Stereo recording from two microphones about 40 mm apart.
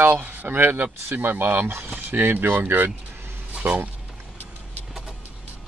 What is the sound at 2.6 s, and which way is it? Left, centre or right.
Speech, right.